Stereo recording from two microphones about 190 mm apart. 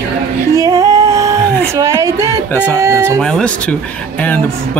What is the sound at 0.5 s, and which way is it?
Female singing, 15° right (ahead or behind).